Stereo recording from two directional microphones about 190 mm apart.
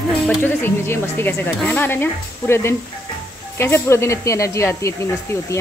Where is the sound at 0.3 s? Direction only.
10° left (ahead or behind).